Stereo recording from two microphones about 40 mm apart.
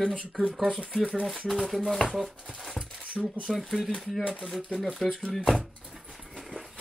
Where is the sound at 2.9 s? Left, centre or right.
Right.